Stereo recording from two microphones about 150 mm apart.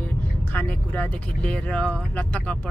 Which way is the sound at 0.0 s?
10° left (ahead or behind).